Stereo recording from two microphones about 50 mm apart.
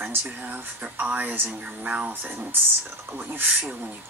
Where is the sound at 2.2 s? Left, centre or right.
Right.